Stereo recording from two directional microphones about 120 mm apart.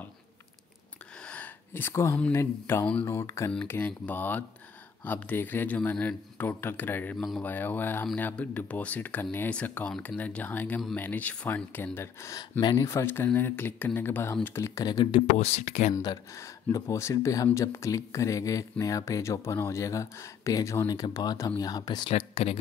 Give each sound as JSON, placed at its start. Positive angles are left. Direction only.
{"t": 1.2, "sound": "a sound", "side_deg": 10}
{"t": 2.3, "sound": "speech", "side_deg": 20}
{"t": 15.1, "sound": "speech", "side_deg": 60}
{"t": 15.9, "sound": "speech", "side_deg": 30}
{"t": 22.1, "sound": "speech", "side_deg": 55}